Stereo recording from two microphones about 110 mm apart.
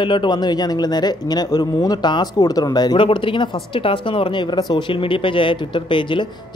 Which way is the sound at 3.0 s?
50° left (ahead or behind).